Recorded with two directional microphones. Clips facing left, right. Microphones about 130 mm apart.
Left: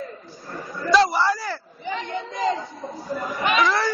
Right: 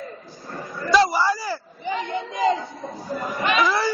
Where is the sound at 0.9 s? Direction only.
5° right (ahead or behind).